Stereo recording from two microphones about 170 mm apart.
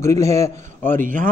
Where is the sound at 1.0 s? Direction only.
50° right (ahead or behind).